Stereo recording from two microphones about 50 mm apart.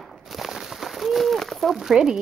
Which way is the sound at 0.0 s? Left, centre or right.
Centre.